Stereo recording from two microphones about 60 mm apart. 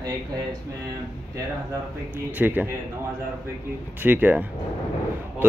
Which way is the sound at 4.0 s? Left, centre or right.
Right.